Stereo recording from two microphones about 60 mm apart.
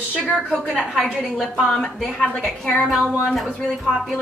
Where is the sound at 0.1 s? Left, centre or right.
Centre.